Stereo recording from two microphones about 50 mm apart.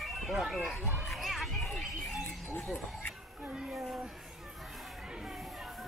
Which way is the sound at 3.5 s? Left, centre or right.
Centre.